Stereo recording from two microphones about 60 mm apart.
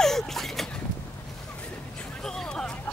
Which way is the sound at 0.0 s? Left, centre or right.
Centre.